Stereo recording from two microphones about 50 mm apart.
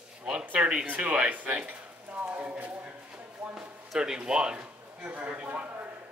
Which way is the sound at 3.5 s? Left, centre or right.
Centre.